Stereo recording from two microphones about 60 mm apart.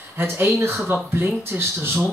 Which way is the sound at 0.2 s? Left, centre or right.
Right.